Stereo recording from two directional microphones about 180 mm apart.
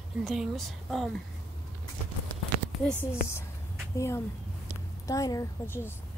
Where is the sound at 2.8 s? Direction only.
5° left (ahead or behind).